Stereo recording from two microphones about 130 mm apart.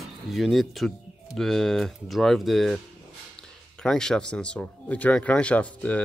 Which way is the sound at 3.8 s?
5° left (ahead or behind).